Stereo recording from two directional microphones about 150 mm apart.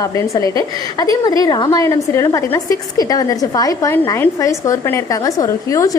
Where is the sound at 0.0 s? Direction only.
20° left (ahead or behind).